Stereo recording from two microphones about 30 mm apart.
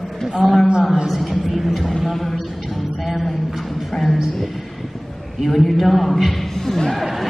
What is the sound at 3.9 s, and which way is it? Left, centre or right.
Speech, centre.